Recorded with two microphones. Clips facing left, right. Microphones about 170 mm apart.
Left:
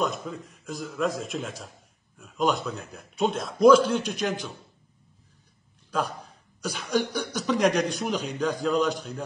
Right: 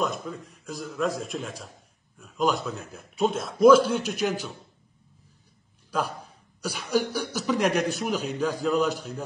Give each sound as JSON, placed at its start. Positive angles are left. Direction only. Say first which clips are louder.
{"t": 0.0, "sound": "speech", "louder": "even", "side_deg": 0}
{"t": 5.9, "sound": "speech", "louder": "even", "side_deg": -10}